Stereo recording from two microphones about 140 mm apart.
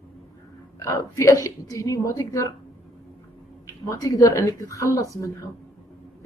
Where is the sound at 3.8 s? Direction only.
25° left (ahead or behind).